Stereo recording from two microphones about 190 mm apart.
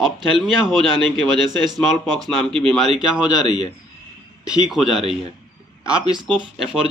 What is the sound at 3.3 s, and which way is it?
Speech, 25° left (ahead or behind).